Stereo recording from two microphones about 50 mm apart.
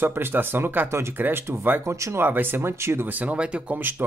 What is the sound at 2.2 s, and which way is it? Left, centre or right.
Speech, right.